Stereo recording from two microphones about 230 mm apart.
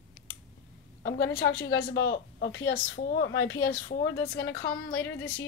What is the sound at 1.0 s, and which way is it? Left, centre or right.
A woman's voice, left.